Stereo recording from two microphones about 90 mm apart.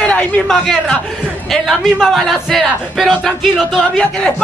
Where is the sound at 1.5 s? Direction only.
5° left (ahead or behind).